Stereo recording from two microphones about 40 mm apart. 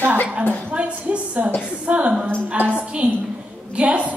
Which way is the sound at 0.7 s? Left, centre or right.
Right.